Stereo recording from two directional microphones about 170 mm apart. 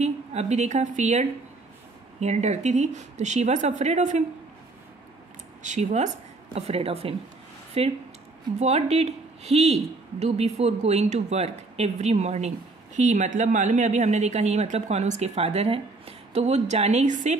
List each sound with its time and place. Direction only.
0.0 s a woman's voice: 40° right (ahead or behind)
5.6 s a woman's voice: 45° right (ahead or behind)